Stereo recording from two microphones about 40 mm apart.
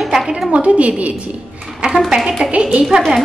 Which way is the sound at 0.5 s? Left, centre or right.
Right.